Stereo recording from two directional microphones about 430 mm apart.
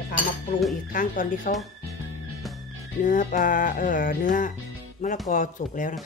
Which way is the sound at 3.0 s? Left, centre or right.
Centre.